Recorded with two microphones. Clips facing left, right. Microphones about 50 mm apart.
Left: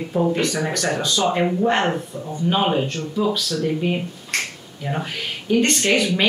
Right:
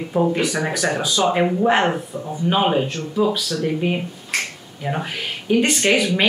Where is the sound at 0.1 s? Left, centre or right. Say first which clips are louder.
Right 1 dB; centre.